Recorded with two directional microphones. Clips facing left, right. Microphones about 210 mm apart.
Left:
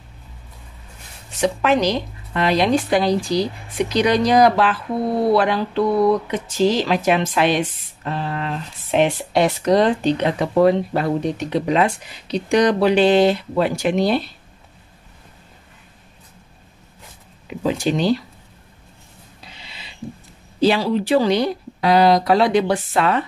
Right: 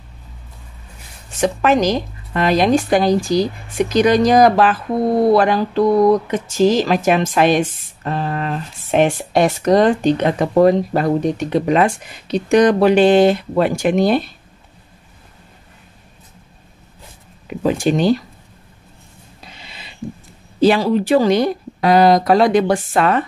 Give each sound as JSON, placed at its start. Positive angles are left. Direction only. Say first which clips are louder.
{"t": 1.4, "sound": "speech", "louder": "right 2 dB", "side_deg": -45}
{"t": 17.6, "sound": "speech", "louder": "right 3 dB", "side_deg": -50}
{"t": 19.4, "sound": "a sound", "louder": "right 3 dB", "side_deg": -50}
{"t": 20.6, "sound": "speech", "louder": "right 3 dB", "side_deg": -50}